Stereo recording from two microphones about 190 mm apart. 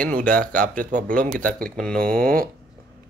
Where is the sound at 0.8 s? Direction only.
45° right (ahead or behind).